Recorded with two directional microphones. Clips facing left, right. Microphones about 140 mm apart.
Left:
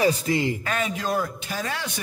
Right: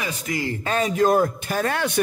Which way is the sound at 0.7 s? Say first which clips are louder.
Right 7 dB; 40° right (ahead or behind).